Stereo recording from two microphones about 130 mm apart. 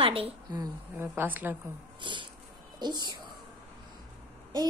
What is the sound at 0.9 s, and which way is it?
Speech, 15° right (ahead or behind).